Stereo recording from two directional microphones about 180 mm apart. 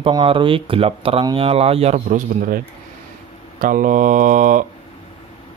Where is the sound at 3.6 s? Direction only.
50° right (ahead or behind).